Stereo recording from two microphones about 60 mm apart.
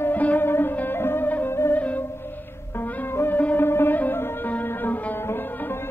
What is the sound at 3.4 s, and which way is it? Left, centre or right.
Music, left.